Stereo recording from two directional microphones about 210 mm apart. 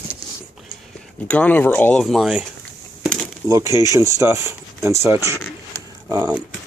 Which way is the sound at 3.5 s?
15° right (ahead or behind).